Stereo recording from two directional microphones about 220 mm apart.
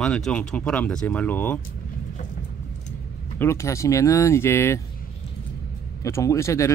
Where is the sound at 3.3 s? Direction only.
10° left (ahead or behind).